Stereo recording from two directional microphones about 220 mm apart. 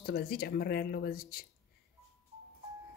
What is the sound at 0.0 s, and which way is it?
Speech, 45° left (ahead or behind).